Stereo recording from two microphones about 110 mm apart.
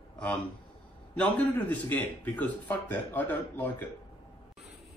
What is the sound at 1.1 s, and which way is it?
Speech, 10° left (ahead or behind).